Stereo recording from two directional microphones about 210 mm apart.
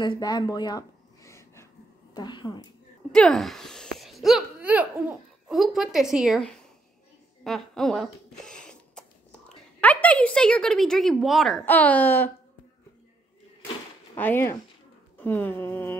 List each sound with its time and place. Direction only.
0.2 s a sound: 20° left (ahead or behind)
2.1 s a woman's voice: 20° left (ahead or behind)
3.1 s a child's voice: centre (ahead or behind)
7.4 s a sound: centre (ahead or behind)
10.0 s a woman's voice: 5° left (ahead or behind)
14.1 s speech: 10° left (ahead or behind)